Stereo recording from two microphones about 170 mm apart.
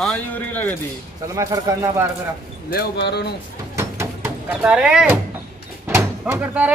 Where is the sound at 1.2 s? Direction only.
20° right (ahead or behind).